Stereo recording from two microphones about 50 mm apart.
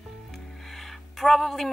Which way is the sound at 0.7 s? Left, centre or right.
Centre.